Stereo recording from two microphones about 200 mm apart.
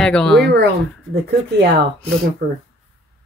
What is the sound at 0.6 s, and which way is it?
Speech, 55° right (ahead or behind).